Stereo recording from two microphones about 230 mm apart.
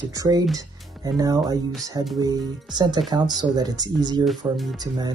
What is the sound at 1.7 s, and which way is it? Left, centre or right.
Speech, centre.